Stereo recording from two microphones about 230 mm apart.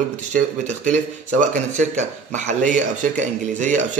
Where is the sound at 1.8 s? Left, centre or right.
Right.